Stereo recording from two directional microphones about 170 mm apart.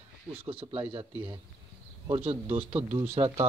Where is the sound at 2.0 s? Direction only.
30° right (ahead or behind).